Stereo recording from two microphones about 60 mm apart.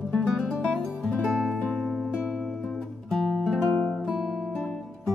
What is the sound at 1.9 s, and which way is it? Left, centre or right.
Music, centre.